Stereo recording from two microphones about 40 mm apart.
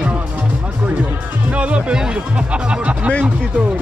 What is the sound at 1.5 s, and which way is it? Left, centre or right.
Speech, right.